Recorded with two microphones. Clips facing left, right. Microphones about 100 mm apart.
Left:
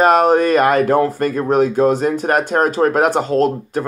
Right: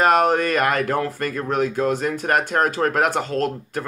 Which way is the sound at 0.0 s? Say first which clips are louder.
Left 5 dB; 25° left (ahead or behind).